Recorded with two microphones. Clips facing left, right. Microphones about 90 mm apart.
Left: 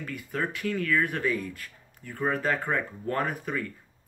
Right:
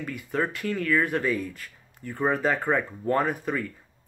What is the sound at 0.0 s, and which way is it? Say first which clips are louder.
Speech: right 4 dB; 5° right (ahead or behind).